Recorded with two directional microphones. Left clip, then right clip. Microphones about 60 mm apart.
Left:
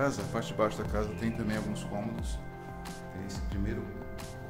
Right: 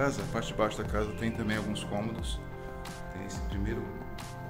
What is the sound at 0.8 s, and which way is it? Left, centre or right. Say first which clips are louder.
Speech: right 1 dB; centre.